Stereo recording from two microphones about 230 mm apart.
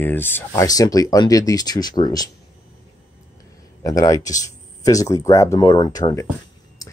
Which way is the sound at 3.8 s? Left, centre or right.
Centre.